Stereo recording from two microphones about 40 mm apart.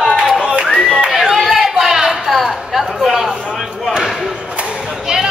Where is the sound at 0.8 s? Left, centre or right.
Right.